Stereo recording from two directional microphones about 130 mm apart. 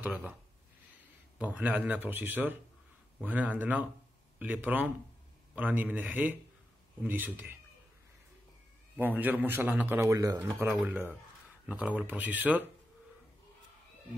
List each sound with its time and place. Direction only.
1.4 s a man's voice: 10° right (ahead or behind)
8.9 s a man's voice: 15° right (ahead or behind)